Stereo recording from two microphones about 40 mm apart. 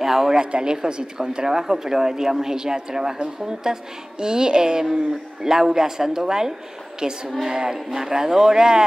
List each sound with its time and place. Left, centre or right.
0.0 s speech: centre
0.4 s speech: right